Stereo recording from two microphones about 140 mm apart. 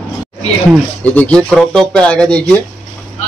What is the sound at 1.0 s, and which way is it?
Speech, 10° left (ahead or behind).